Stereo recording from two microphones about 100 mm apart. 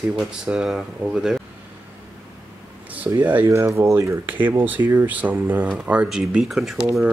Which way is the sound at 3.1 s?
20° right (ahead or behind).